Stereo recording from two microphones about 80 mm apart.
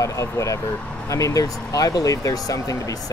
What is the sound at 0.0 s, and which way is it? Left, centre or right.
Speech, left.